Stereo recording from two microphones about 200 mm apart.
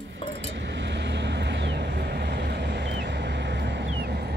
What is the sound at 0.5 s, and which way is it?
Vehicle, 60° right (ahead or behind).